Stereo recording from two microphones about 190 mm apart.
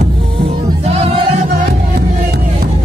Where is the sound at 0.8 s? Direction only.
35° right (ahead or behind).